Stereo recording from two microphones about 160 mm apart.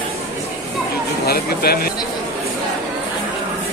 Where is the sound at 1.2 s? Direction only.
75° left (ahead or behind).